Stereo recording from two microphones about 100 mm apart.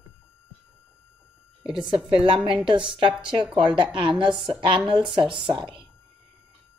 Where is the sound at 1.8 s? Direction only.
55° right (ahead or behind).